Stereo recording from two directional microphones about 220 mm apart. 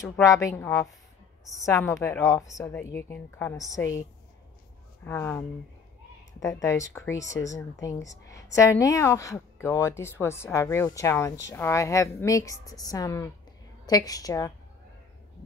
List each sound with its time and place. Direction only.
0.2 s speech: 15° left (ahead or behind)
1.9 s speech: 10° left (ahead or behind)
5.0 s speech: 10° left (ahead or behind)
6.4 s speech: 15° left (ahead or behind)